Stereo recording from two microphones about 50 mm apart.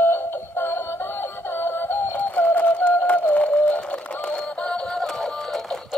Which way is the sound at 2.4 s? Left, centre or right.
Left.